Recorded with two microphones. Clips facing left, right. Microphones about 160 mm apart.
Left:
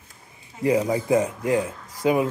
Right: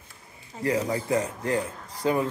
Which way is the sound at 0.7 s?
15° left (ahead or behind).